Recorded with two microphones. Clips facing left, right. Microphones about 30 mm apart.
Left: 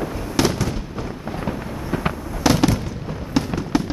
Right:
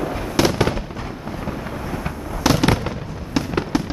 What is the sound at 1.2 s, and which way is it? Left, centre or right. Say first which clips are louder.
Vehicle: left 1 dB; centre.